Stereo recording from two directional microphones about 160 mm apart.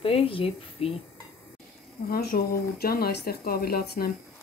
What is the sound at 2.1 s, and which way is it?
Speech, 70° left (ahead or behind).